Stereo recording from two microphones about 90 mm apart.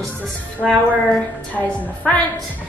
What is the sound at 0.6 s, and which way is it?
Speech, 5° left (ahead or behind).